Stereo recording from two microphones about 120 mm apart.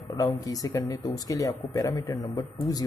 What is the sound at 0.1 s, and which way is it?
Speech, 30° left (ahead or behind).